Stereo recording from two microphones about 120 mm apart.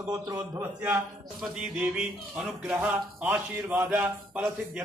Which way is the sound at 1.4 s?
5° right (ahead or behind).